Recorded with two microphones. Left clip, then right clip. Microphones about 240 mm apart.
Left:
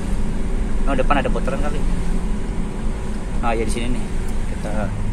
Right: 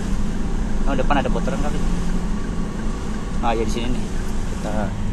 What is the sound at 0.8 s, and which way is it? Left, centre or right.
Speech, centre.